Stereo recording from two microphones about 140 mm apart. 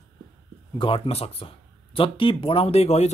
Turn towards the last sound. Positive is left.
turn(degrees=50)  # may be behind; listen again after turning